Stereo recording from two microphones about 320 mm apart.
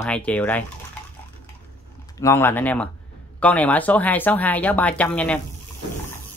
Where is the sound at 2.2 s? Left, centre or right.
Centre.